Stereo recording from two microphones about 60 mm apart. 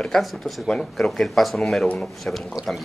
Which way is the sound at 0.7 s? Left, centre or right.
Centre.